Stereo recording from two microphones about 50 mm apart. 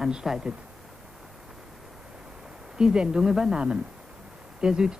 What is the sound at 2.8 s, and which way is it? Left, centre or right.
Speech, centre.